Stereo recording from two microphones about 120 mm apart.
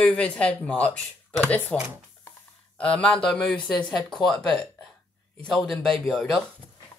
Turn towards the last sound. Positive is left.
turn(degrees=5)  # may be behind; listen again after turning